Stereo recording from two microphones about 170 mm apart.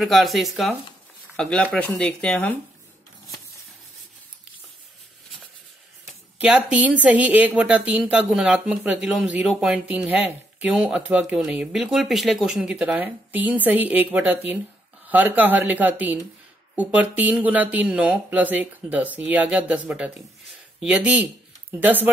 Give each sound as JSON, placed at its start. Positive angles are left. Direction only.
{"t": 0.0, "sound": "speech", "side_deg": 0}
{"t": 6.4, "sound": "speech", "side_deg": -5}